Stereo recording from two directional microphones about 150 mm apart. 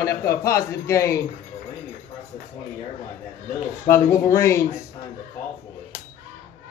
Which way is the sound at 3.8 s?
20° left (ahead or behind).